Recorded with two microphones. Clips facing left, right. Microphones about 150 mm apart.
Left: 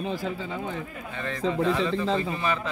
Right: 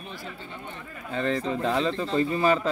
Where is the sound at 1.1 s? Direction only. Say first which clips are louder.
Right 1 dB; 35° right (ahead or behind).